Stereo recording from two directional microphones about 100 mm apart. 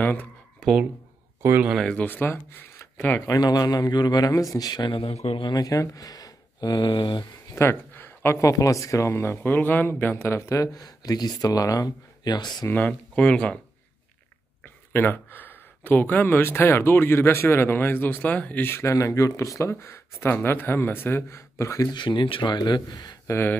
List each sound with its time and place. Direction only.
0.0 s speech: 15° left (ahead or behind)
0.6 s a sound: centre (ahead or behind)
1.4 s speech: 25° right (ahead or behind)
1.8 s speech: 10° left (ahead or behind)
3.3 s a man's voice: 40° left (ahead or behind)
4.9 s speech: 85° left
5.4 s a man's voice: 40° left (ahead or behind)
7.5 s speech: 20° left (ahead or behind); by 12.6 s 45° left (ahead or behind)
12.6 s speech: 15° left (ahead or behind)
14.9 s speech: 20° left (ahead or behind)
21.9 s a man's voice: 55° left (ahead or behind)